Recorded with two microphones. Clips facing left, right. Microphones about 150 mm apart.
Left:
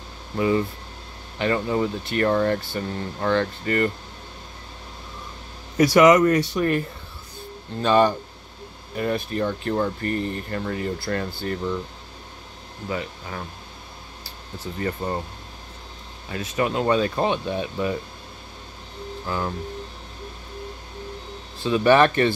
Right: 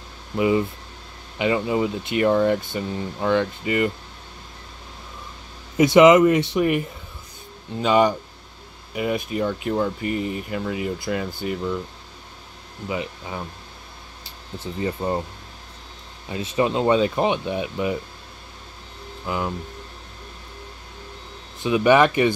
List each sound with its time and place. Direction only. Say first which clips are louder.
0.4 s speech: right 2 dB; 15° right (ahead or behind)
5.8 s speech: right 2 dB; 20° right (ahead or behind)
12.8 s speech: right 1 dB; 15° right (ahead or behind)
14.6 s speech: right 2 dB; 15° right (ahead or behind)
16.3 s speech: right 2 dB; 20° right (ahead or behind)
19.2 s speech: right 1 dB; 15° right (ahead or behind)
21.5 s speech: even; 15° right (ahead or behind)